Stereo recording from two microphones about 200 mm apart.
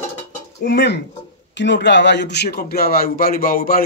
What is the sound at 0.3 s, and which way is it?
Dishes, 45° left (ahead or behind).